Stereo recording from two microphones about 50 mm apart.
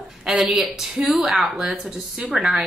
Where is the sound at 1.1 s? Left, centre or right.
Centre.